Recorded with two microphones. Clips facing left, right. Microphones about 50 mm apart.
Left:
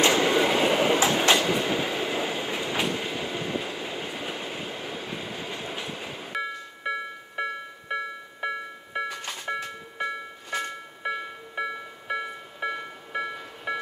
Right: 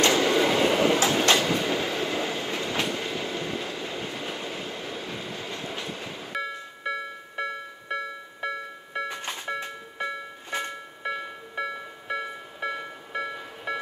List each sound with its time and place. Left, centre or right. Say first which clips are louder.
0.0 s train: even; centre
9.1 s music: right 1 dB; right
10.5 s music: left 1 dB; right
11.1 s music: left 1 dB; centre